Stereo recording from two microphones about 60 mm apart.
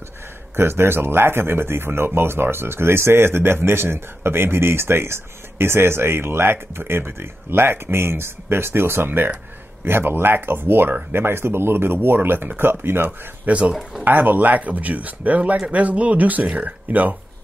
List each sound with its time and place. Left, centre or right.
0.6 s speech: right
13.5 s speech: right